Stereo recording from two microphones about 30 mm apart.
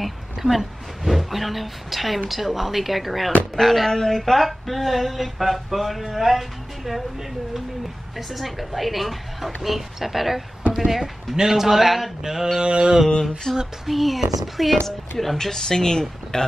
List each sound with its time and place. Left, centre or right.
0.0 s speech: centre
8.2 s a woman's voice: centre
12.2 s a woman's voice: centre
12.6 s mantra: right
13.5 s speech: centre
13.8 s speech: centre